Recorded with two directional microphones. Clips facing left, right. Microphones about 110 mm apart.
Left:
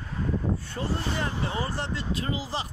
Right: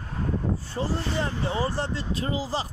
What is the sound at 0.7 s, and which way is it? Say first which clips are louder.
Speech: right 2 dB; 30° right (ahead or behind).